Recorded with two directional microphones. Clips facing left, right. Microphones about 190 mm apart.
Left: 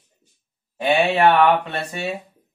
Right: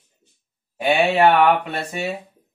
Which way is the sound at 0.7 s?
10° right (ahead or behind).